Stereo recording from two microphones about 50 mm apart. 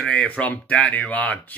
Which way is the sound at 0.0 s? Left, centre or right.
Left.